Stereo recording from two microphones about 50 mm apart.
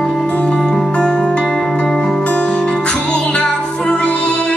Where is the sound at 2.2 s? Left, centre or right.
Centre.